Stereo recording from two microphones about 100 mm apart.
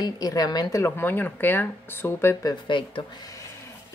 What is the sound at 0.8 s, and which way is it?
Speech, 20° left (ahead or behind).